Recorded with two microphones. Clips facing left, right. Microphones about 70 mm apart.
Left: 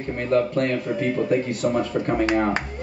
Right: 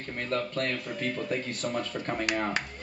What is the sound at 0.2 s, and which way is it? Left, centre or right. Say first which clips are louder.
Speech: left 10 dB; left.